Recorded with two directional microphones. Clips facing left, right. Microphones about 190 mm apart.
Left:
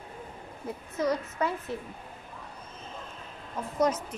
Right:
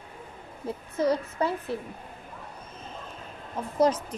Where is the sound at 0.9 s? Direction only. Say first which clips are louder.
Right 3 dB; 30° right (ahead or behind).